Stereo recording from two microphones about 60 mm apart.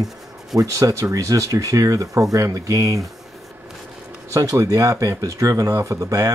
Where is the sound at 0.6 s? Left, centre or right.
Right.